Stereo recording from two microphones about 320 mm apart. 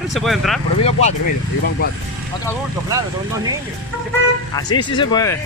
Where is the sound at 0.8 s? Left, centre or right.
Left.